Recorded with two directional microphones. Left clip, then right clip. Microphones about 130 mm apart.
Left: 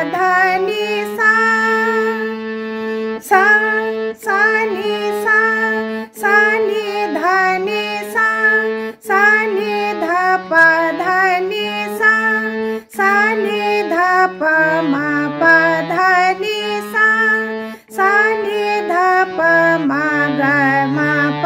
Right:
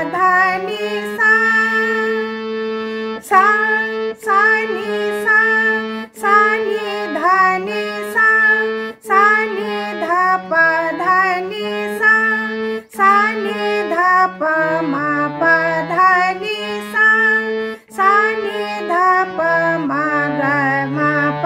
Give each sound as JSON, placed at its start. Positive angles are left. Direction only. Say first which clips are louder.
{"t": 0.2, "sound": "music", "louder": "even", "side_deg": 40}
{"t": 3.3, "sound": "music", "louder": "even", "side_deg": 45}
{"t": 4.3, "sound": "child singing", "louder": "right 1 dB", "side_deg": 40}
{"t": 5.2, "sound": "music", "louder": "right 1 dB", "side_deg": 40}
{"t": 6.2, "sound": "child singing", "louder": "even", "side_deg": 45}
{"t": 7.2, "sound": "music", "louder": "right 2 dB", "side_deg": 40}
{"t": 9.1, "sound": "child singing", "louder": "even", "side_deg": 40}
{"t": 10.0, "sound": "music", "louder": "right 2 dB", "side_deg": 45}
{"t": 17.9, "sound": "female singing", "louder": "even", "side_deg": 45}
{"t": 18.9, "sound": "music", "louder": "right 2 dB", "side_deg": 45}